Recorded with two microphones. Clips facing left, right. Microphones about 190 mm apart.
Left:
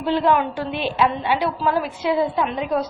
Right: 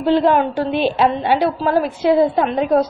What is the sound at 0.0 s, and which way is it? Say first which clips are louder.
A woman's voice: right 5 dB; 35° right (ahead or behind).